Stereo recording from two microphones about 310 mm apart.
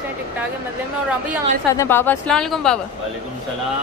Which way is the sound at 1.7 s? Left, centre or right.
Centre.